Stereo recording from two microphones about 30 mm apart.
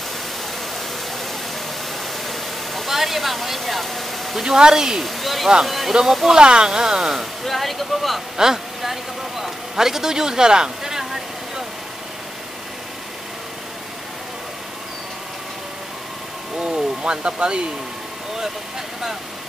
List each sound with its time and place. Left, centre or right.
2.2 s vehicle: centre
2.9 s speech: centre
4.6 s speech: right
5.0 s speech: centre
6.3 s speech: right
7.4 s speech: centre
8.4 s speech: right
16.5 s vehicle: right